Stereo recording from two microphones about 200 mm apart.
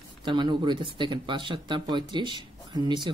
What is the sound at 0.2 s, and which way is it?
Speech, 25° right (ahead or behind).